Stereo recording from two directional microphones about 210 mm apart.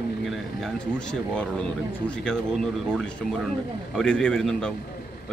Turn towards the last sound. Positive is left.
turn(degrees=5)  # may be behind; listen again after turning